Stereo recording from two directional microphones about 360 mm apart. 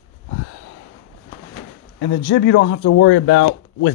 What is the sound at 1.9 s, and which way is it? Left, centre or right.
Speech, left.